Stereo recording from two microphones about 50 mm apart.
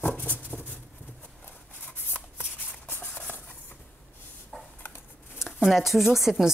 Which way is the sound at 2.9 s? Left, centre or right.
Left.